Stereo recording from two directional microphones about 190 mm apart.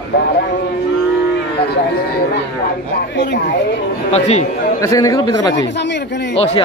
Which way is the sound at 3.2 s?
65° left (ahead or behind).